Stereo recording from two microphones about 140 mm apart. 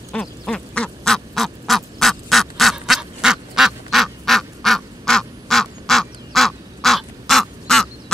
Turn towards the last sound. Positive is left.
turn(degrees=5)  # may be behind; listen again after turning